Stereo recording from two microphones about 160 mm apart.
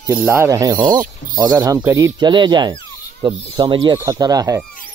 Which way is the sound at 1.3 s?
25° right (ahead or behind).